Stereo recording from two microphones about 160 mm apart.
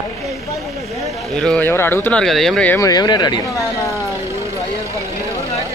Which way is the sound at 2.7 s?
25° left (ahead or behind).